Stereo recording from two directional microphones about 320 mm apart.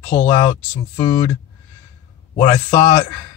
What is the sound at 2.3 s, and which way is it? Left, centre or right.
Speech, centre.